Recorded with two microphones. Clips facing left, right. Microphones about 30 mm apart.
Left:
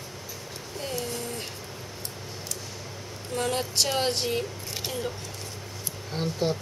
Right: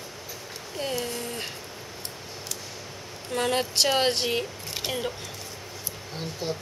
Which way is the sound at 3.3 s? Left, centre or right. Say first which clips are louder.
Right 3 dB; right.